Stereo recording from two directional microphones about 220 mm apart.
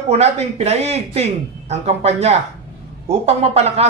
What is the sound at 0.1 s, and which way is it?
Speech, 30° right (ahead or behind).